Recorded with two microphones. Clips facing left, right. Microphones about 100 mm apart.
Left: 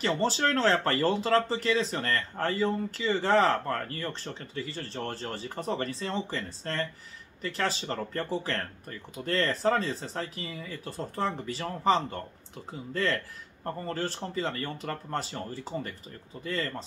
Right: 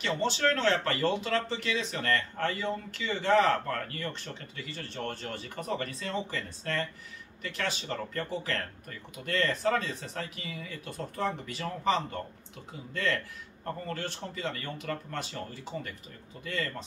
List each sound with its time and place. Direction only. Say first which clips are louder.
0.0 s speech: left 2 dB; 35° left (ahead or behind)